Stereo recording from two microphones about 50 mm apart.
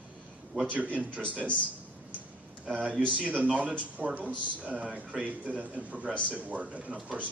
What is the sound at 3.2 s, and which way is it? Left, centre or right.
Speech, right.